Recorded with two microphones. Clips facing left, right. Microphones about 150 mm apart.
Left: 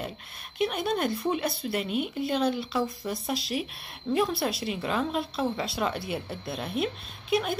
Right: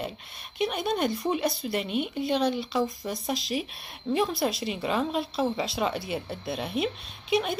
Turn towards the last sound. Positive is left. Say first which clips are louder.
# right 1 dB
turn(degrees=0)  # may be behind; listen again after turning